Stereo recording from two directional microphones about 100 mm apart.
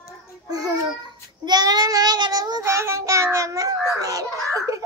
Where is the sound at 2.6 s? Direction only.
30° right (ahead or behind).